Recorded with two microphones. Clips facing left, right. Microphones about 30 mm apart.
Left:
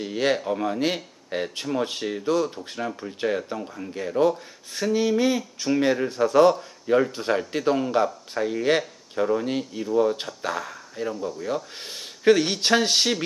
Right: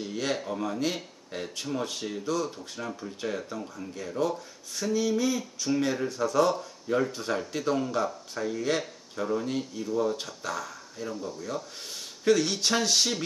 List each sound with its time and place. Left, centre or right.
0.0 s speech: left
11.1 s speech: centre
11.4 s speech: left